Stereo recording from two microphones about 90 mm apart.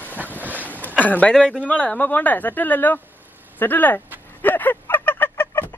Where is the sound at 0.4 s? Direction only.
20° right (ahead or behind).